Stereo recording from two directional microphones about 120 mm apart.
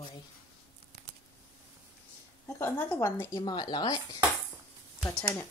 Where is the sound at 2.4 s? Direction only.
20° left (ahead or behind).